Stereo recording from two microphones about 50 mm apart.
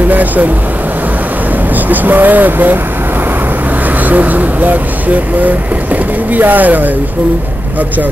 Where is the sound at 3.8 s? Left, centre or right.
Right.